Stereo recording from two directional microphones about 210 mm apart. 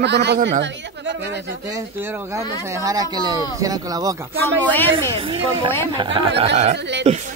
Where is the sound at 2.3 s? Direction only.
15° right (ahead or behind).